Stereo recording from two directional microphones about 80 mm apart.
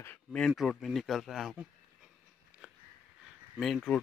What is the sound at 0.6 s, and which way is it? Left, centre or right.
Speech, centre.